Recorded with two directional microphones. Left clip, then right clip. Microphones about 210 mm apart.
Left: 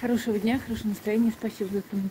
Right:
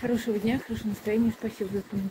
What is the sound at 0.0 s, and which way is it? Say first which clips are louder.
Speech: left 1 dB; 25° left (ahead or behind).